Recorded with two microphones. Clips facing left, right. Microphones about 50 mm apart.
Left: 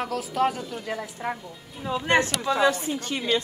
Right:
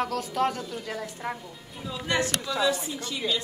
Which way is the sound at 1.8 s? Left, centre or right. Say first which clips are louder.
Left 5 dB; left.